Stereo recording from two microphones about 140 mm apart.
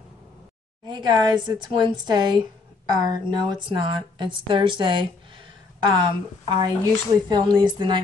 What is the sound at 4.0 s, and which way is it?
A woman's voice, 35° right (ahead or behind).